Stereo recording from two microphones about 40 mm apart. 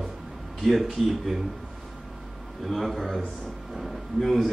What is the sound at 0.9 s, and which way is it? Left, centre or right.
Speech, centre.